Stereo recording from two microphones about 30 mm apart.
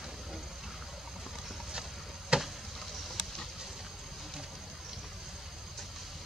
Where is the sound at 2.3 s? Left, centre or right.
Right.